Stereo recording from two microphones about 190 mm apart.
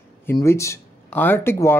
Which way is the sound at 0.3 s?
15° left (ahead or behind).